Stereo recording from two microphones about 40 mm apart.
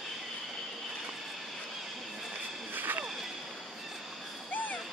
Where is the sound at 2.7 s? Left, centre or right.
Right.